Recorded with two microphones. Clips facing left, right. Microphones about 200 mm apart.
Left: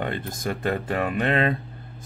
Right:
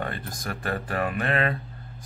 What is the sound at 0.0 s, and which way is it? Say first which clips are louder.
Speech: left 4 dB; 20° left (ahead or behind).